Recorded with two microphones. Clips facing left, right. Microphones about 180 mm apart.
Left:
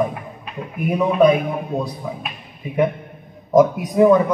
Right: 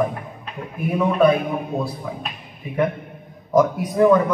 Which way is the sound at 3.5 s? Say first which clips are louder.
Left 3 dB; 20° left (ahead or behind).